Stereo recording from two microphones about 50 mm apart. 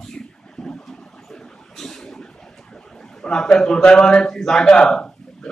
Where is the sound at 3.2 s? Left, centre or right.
Centre.